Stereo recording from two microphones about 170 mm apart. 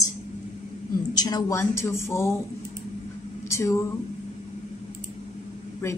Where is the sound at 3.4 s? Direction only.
15° left (ahead or behind).